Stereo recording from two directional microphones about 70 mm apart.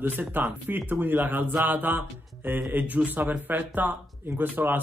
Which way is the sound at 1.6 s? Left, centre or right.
Right.